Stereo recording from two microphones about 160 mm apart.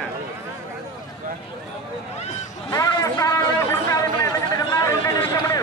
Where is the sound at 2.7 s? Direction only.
20° left (ahead or behind).